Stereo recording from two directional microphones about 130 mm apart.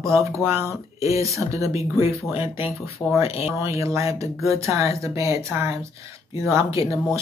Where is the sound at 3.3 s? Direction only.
50° left (ahead or behind).